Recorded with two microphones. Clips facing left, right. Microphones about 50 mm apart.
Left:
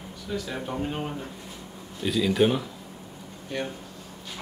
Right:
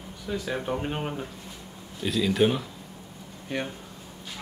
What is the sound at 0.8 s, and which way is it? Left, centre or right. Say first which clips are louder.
Speech: even; right.